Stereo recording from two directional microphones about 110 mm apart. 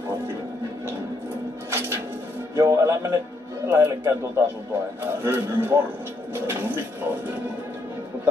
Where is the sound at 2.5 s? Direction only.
30° right (ahead or behind).